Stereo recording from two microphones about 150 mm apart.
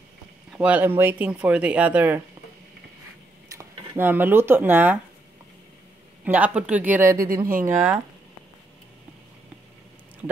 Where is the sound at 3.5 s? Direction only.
20° right (ahead or behind).